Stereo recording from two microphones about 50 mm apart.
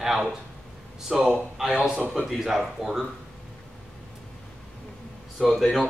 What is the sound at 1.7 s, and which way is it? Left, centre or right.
Speech, centre.